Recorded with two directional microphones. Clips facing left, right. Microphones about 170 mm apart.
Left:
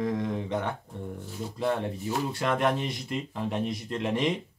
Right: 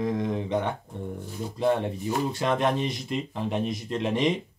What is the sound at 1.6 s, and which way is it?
Speech, 20° right (ahead or behind).